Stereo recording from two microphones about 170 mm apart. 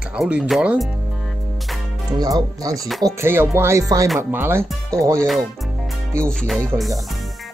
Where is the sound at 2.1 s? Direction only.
20° right (ahead or behind).